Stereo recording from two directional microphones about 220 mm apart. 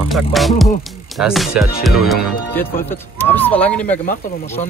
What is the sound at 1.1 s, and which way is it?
A man's voice, centre (ahead or behind).